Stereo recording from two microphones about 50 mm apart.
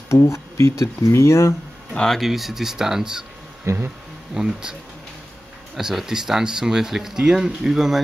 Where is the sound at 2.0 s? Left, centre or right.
Centre.